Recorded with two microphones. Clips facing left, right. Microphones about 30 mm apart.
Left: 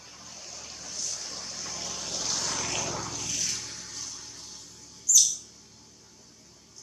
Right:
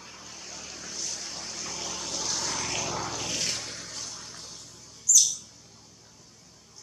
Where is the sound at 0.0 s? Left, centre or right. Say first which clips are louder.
Right 2 dB; centre.